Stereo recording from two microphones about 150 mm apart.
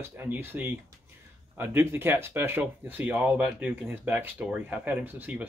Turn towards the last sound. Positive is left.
turn(degrees=-10)  # may be behind; listen again after turning